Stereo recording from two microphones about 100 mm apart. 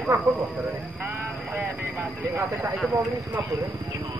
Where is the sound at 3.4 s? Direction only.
35° right (ahead or behind).